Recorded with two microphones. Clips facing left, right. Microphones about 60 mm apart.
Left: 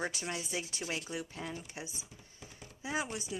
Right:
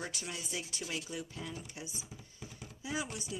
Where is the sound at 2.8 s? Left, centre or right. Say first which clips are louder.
Left 2 dB; left.